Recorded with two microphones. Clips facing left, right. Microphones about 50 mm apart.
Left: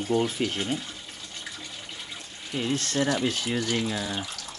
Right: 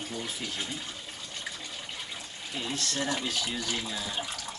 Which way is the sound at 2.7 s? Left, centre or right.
Left.